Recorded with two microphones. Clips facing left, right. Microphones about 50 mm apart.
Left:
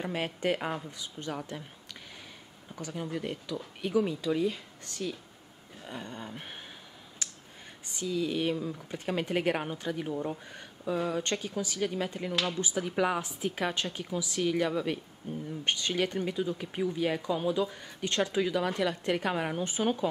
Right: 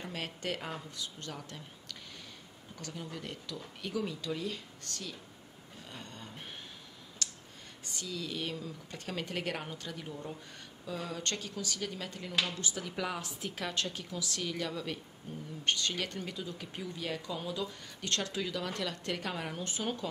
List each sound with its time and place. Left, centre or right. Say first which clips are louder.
0.0 s speech: left 8 dB; left
7.2 s a sound: right 1 dB; left
7.8 s speech: left 9 dB; centre